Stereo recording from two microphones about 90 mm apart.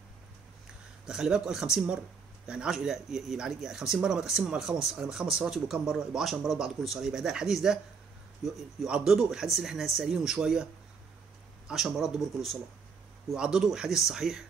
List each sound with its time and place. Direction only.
1.0 s speech: 5° right (ahead or behind)